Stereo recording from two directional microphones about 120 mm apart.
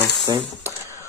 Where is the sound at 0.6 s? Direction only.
25° right (ahead or behind).